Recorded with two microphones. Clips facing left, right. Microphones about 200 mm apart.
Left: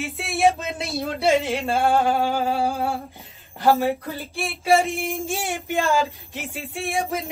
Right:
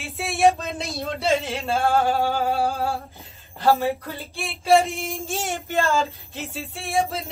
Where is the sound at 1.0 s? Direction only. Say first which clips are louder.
Left 3 dB; 15° left (ahead or behind).